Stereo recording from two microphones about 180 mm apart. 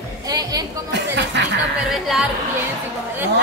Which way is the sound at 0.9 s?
75° right (ahead or behind).